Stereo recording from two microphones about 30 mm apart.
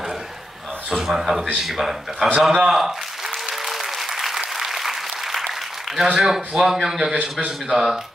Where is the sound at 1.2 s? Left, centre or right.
Centre.